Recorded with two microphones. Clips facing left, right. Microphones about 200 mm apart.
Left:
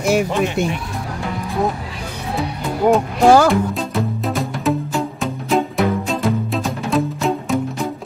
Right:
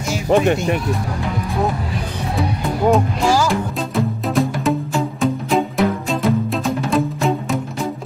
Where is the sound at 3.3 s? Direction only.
60° left (ahead or behind).